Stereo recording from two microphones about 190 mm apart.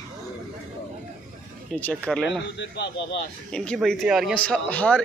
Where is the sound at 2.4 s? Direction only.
65° left (ahead or behind).